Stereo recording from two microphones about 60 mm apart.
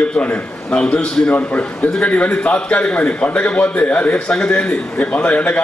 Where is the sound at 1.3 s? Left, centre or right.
Left.